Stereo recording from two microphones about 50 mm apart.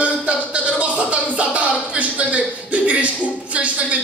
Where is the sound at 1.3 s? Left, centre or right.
Right.